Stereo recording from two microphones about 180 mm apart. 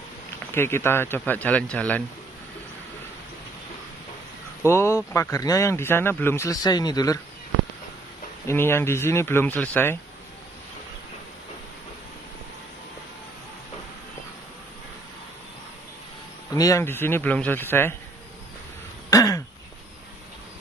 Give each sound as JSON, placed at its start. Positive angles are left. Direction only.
{"t": 0.6, "sound": "speech", "side_deg": 15}
{"t": 4.6, "sound": "speech", "side_deg": 15}
{"t": 8.5, "sound": "speech", "side_deg": 15}
{"t": 16.5, "sound": "speech", "side_deg": 15}
{"t": 19.0, "sound": "throat clearing", "side_deg": 20}